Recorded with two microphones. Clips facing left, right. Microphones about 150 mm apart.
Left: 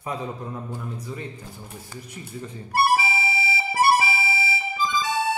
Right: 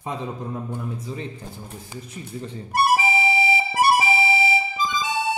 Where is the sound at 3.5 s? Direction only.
15° right (ahead or behind).